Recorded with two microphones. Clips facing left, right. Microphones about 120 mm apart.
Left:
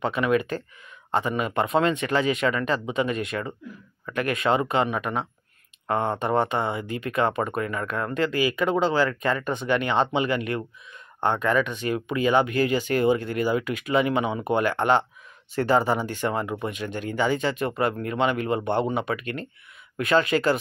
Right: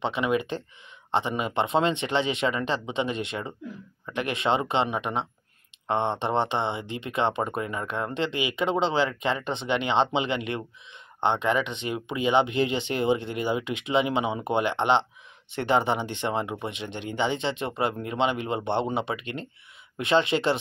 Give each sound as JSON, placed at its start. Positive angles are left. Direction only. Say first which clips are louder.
{"t": 0.0, "sound": "speech", "louder": "left 3 dB", "side_deg": -20}